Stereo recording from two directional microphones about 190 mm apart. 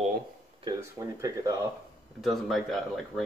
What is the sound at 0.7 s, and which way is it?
Speech, 20° right (ahead or behind).